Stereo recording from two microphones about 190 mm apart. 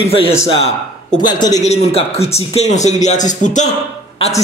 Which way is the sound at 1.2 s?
20° left (ahead or behind).